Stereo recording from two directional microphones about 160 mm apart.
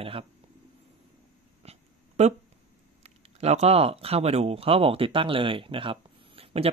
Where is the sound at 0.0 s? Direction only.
35° right (ahead or behind).